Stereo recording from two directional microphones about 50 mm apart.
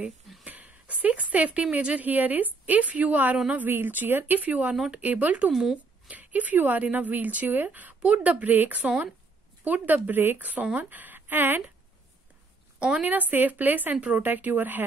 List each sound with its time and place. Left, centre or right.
0.5 s speech: right
2.0 s speech: right
3.6 s speech: right
5.5 s speech: centre
6.0 s speech: right
12.7 s a woman's voice: right
13.1 s speech: right